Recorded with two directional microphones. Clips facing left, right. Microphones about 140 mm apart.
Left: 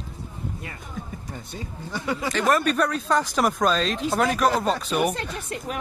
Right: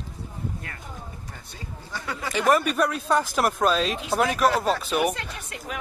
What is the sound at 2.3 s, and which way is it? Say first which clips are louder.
Speech: right 1 dB; 10° right (ahead or behind).